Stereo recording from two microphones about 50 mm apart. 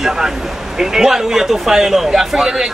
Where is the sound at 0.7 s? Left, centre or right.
Centre.